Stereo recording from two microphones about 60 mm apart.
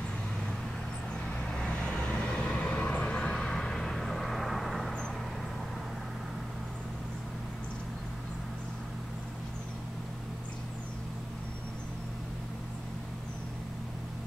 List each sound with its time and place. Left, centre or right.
1.7 s vehicle: centre